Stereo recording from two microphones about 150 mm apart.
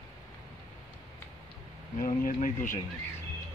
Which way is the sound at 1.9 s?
65° left (ahead or behind).